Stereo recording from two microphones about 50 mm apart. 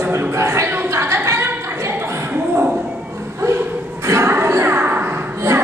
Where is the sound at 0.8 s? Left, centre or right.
Right.